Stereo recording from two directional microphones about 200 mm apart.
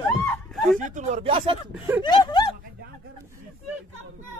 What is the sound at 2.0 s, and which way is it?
Speech, 20° left (ahead or behind).